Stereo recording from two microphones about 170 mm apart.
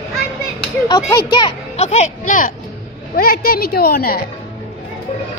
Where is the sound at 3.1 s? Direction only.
60° left (ahead or behind).